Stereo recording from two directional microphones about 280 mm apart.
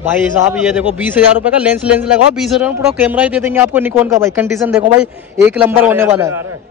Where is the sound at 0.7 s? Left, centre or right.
Centre.